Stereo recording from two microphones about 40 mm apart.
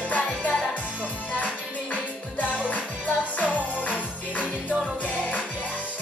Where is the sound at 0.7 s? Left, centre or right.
Left.